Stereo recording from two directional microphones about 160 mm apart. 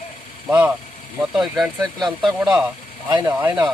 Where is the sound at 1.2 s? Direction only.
Centre (ahead or behind).